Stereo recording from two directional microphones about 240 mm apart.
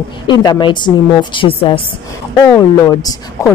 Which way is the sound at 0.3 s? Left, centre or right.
Centre.